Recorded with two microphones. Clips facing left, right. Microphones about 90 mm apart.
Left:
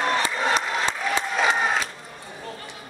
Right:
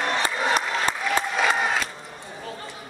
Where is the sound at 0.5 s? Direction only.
50° right (ahead or behind).